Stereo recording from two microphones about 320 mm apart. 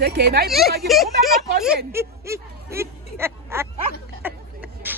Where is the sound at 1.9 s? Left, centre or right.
Centre.